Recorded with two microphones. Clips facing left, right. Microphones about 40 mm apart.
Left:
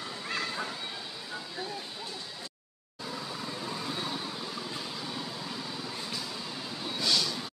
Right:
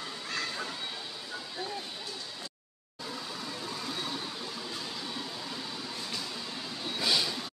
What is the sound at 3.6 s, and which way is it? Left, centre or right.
Vehicle, centre.